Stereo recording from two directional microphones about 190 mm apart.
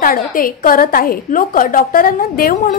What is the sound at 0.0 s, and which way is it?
A woman's voice, 50° left (ahead or behind).